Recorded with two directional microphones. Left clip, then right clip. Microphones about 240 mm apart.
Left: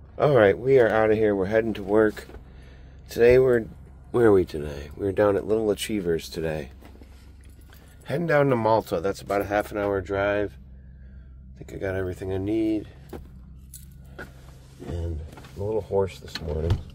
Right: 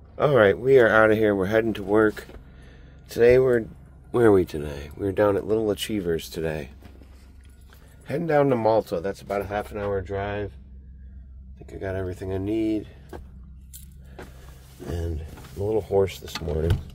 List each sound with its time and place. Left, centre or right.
0.1 s speech: centre
8.0 s a man's voice: centre
11.6 s speech: centre
14.9 s speech: right